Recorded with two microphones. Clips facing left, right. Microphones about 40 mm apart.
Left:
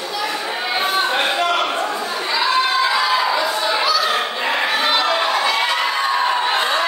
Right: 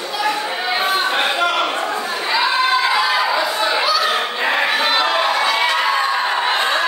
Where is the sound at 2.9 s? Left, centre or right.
Centre.